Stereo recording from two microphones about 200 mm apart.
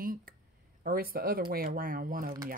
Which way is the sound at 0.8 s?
45° right (ahead or behind).